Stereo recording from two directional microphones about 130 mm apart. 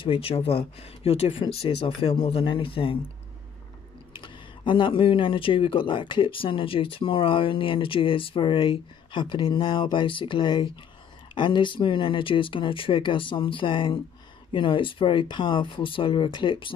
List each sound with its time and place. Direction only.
0.0 s speech: 45° left (ahead or behind)
4.1 s speech: 40° left (ahead or behind)